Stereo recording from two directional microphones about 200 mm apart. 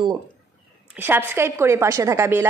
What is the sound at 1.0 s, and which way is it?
A woman's voice, 10° right (ahead or behind).